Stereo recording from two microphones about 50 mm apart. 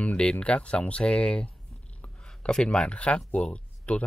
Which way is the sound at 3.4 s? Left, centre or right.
Left.